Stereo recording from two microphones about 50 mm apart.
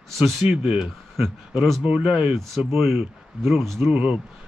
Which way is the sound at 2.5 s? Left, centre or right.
Centre.